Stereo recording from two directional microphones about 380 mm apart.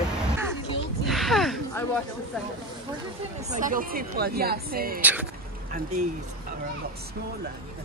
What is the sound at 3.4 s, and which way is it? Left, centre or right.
Speech, centre.